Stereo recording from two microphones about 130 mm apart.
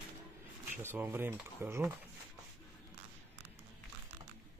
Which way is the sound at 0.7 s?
15° right (ahead or behind).